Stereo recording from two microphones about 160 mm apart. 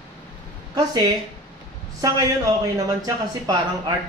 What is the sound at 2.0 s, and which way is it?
Speech, 20° right (ahead or behind).